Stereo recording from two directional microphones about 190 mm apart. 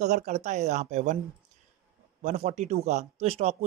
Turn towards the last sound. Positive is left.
turn(degrees=-35)  # may be behind; listen again after turning